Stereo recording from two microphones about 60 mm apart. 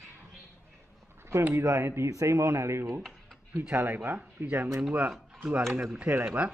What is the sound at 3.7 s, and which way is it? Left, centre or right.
Speech, right.